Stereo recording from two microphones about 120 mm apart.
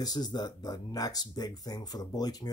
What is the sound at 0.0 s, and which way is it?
Speech, 35° left (ahead or behind).